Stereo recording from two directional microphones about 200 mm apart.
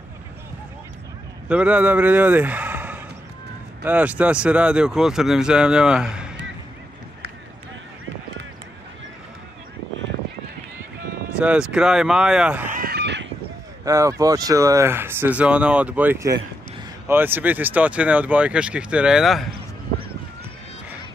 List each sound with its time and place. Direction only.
1.5 s a man's voice: 5° right (ahead or behind)
11.3 s speech: 5° right (ahead or behind)
12.7 s a sound: 50° right (ahead or behind)
13.8 s speech: 15° right (ahead or behind)